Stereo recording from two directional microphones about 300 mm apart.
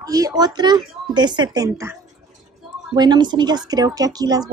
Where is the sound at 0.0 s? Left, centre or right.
Centre.